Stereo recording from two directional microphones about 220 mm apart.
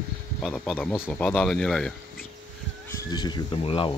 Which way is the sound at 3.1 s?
20° left (ahead or behind).